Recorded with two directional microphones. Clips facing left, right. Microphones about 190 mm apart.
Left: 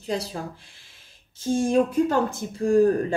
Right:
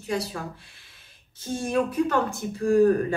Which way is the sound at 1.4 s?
25° left (ahead or behind).